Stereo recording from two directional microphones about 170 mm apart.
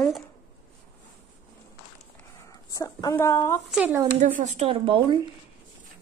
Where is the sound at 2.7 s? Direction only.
20° left (ahead or behind).